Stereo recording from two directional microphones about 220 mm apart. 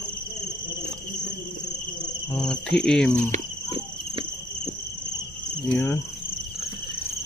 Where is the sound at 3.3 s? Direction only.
25° right (ahead or behind).